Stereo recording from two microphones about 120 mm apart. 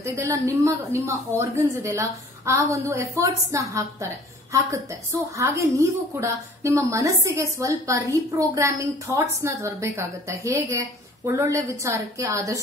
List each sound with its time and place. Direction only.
0.0 s a woman's voice: 25° right (ahead or behind)